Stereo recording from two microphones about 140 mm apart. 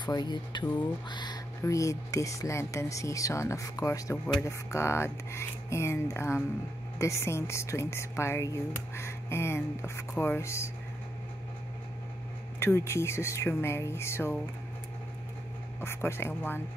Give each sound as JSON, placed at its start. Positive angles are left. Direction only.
{"t": 0.0, "sound": "speech", "side_deg": 30}
{"t": 12.5, "sound": "speech", "side_deg": 20}
{"t": 15.8, "sound": "speech", "side_deg": 20}